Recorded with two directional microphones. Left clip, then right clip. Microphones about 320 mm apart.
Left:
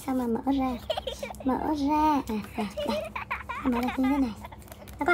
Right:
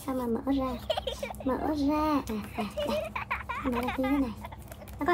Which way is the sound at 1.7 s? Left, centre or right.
Left.